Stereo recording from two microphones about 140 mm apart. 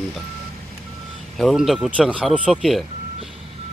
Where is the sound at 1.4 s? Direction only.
Centre (ahead or behind).